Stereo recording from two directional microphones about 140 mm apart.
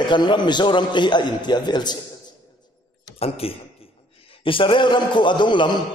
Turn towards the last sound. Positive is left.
turn(degrees=35)  # may be behind; listen again after turning